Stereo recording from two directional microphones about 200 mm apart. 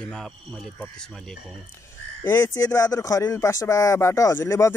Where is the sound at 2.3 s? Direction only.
15° left (ahead or behind).